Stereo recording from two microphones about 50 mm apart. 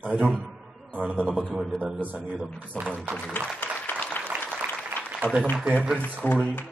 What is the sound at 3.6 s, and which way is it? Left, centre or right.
Applause, left.